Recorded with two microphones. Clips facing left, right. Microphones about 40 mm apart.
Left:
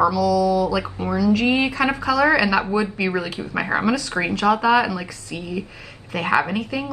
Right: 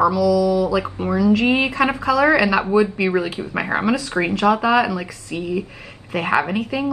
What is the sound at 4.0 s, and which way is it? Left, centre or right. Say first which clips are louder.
A woman's voice: right 2 dB; right.